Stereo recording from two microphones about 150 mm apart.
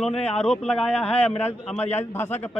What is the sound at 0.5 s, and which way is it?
A man's voice, 5° left (ahead or behind).